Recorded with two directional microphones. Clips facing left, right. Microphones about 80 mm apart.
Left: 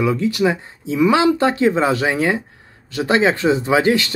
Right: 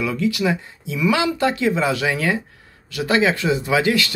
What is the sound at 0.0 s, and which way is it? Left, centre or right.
Speech, left.